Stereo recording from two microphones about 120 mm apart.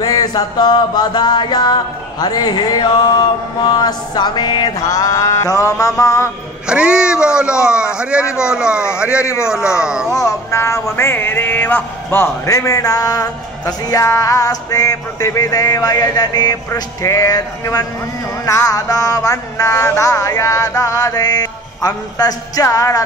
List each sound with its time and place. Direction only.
0.0 s music: 35° left (ahead or behind)
6.7 s a man's voice: 5° right (ahead or behind)
9.2 s music: 25° left (ahead or behind)
9.5 s a man's voice: 5° right (ahead or behind)
10.0 s music: 25° left (ahead or behind)